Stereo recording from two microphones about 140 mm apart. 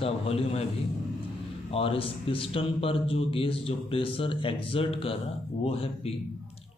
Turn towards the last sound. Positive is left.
turn(degrees=45)  # may be behind; listen again after turning